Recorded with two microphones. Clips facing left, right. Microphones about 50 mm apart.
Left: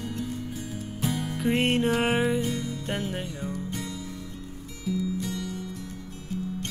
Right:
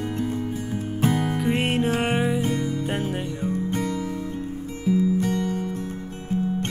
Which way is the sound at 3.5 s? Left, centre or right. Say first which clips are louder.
Right 8 dB; right.